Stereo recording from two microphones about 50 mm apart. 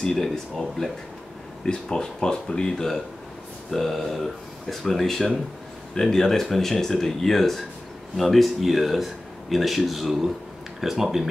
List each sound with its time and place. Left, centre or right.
0.0 s speech: centre
1.7 s speech: centre